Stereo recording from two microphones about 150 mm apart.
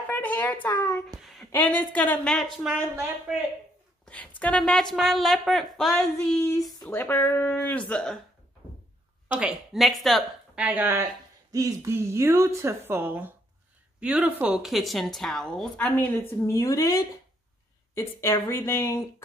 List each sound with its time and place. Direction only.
0.1 s speech: 10° left (ahead or behind)
1.2 s a sound: centre (ahead or behind)
1.5 s speech: 10° left (ahead or behind)
4.0 s a sound: 10° left (ahead or behind)
4.4 s a woman's voice: 10° left (ahead or behind)
6.3 s female singing: 20° left (ahead or behind)
6.8 s speech: 15° left (ahead or behind)
9.4 s speech: 5° right (ahead or behind)
11.5 s a woman's voice: 20° right (ahead or behind); by 19.2 s 15° left (ahead or behind)